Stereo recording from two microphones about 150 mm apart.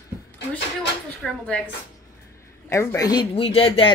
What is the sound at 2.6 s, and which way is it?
Speech, 20° left (ahead or behind).